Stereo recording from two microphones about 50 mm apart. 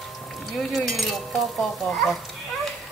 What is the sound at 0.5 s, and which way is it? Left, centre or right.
Speech, centre.